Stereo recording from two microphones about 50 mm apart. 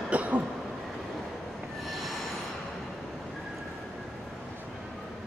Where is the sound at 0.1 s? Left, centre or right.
Right.